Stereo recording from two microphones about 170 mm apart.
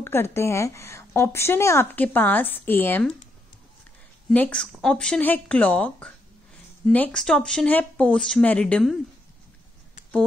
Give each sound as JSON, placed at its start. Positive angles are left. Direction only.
{"t": 0.0, "sound": "a woman's voice", "side_deg": 15}
{"t": 4.3, "sound": "a woman's voice", "side_deg": 5}